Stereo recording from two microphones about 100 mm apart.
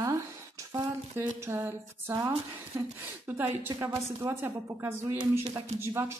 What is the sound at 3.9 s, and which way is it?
Speech, 30° right (ahead or behind).